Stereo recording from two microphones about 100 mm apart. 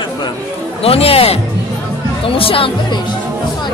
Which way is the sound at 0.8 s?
80° left.